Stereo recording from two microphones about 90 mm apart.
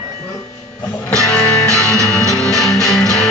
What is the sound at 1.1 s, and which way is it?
Music, 10° left (ahead or behind).